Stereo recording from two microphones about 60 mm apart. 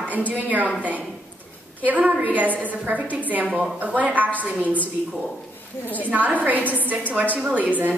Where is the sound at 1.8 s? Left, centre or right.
Right.